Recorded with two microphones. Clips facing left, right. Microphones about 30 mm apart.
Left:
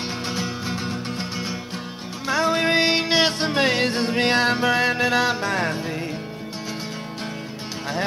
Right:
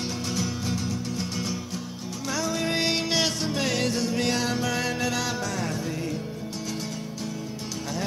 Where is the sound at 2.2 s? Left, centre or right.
Left.